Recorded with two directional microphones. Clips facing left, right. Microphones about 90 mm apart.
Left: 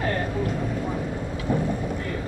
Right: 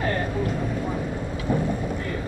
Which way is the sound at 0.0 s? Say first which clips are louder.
Even; 25° right (ahead or behind).